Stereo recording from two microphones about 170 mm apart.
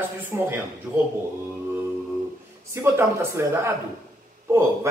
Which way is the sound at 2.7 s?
15° right (ahead or behind).